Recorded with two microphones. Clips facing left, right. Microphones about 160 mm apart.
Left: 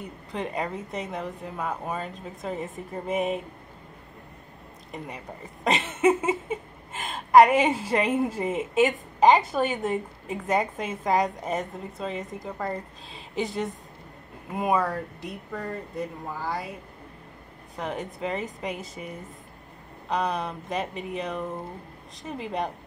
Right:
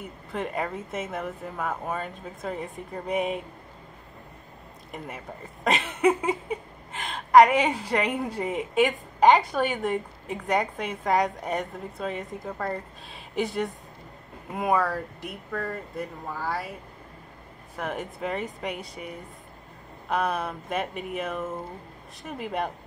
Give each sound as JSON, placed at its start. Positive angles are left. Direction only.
{"t": 0.0, "sound": "a woman's voice", "side_deg": 0}
{"t": 4.9, "sound": "a woman's voice", "side_deg": 0}
{"t": 15.2, "sound": "speech", "side_deg": 20}
{"t": 16.3, "sound": "a woman's voice", "side_deg": 5}
{"t": 17.7, "sound": "a woman's voice", "side_deg": 0}